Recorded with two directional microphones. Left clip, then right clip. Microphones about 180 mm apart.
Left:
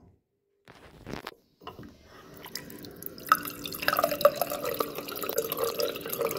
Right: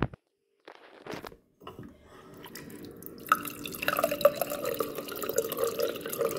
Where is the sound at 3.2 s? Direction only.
10° right (ahead or behind).